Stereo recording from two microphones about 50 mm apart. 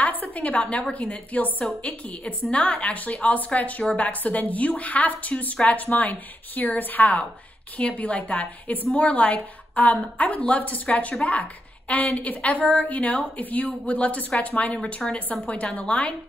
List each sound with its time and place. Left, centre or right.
0.0 s a woman's voice: left